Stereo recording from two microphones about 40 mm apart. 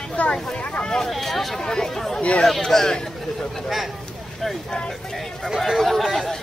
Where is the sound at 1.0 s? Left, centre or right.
Centre.